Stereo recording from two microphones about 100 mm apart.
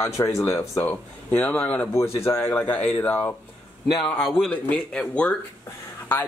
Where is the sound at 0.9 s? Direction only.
15° left (ahead or behind).